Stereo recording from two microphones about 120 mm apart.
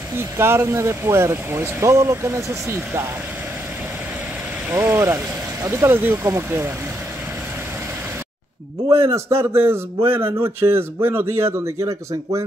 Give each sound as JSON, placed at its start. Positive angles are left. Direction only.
{"t": 0.2, "sound": "speech", "side_deg": -20}
{"t": 4.6, "sound": "speech", "side_deg": -20}
{"t": 9.0, "sound": "speech", "side_deg": -20}